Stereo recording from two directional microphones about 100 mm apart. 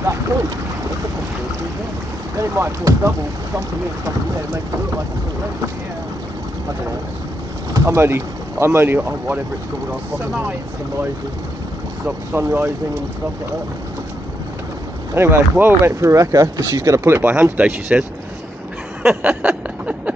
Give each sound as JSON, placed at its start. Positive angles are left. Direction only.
{"t": 0.0, "sound": "boat", "side_deg": -30}
{"t": 2.3, "sound": "speech", "side_deg": -30}
{"t": 7.7, "sound": "speech", "side_deg": -25}
{"t": 12.3, "sound": "speech", "side_deg": -20}
{"t": 15.1, "sound": "speech", "side_deg": -25}
{"t": 19.0, "sound": "a sound", "side_deg": -10}